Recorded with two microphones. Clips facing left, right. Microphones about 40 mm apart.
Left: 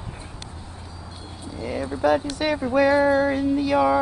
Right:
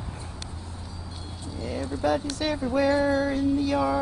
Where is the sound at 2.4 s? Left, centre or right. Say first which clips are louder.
Left 4 dB; left.